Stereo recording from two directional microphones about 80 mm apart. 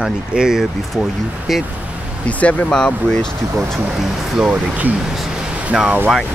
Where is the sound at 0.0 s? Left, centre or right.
Centre.